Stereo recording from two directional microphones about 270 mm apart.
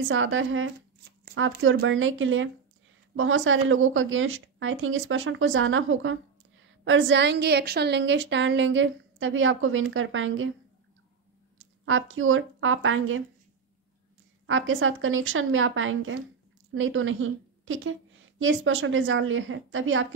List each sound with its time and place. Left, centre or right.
0.1 s a woman's voice: right
11.5 s speech: right
14.4 s a woman's voice: right